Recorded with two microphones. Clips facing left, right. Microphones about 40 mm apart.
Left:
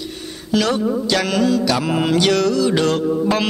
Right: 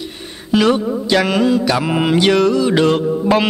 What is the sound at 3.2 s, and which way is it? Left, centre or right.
Music, centre.